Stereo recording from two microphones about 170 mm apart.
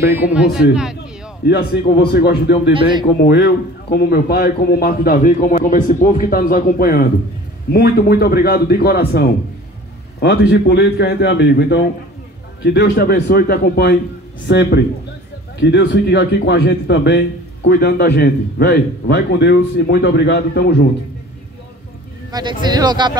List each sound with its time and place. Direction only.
0.0 s speech: 10° right (ahead or behind)
1.4 s a man's voice: 65° left (ahead or behind)
2.7 s speech: 25° right (ahead or behind)
3.3 s a man's voice: 75° left (ahead or behind)
10.2 s a man's voice: 80° left
14.5 s a man's voice: 80° left
22.3 s speech: 25° right (ahead or behind)